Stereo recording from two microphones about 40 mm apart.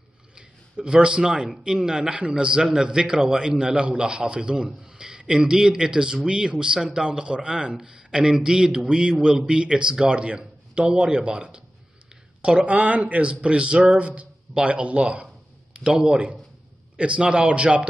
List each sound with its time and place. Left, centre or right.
0.4 s a man's voice: centre; by 15.2 s right
15.8 s a man's voice: centre